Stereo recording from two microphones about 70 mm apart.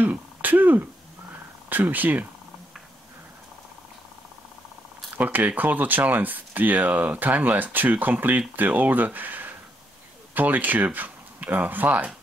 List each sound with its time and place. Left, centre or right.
0.0 s throat clearing: right
1.7 s speech: right
5.1 s speech: right